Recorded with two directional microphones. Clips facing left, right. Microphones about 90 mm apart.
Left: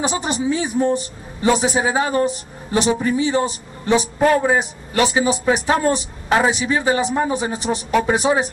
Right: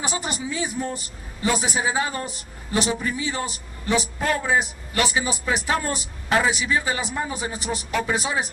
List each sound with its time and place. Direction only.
0.0 s a man's voice: 25° left (ahead or behind)